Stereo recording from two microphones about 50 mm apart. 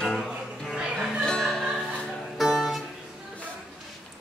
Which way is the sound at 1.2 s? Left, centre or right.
Centre.